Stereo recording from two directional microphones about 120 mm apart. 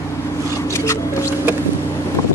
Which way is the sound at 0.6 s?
25° left (ahead or behind).